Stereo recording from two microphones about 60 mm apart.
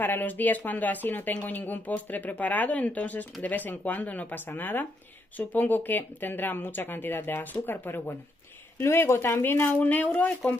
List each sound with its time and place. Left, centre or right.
0.0 s speech: left
8.7 s speech: left
9.8 s speech: left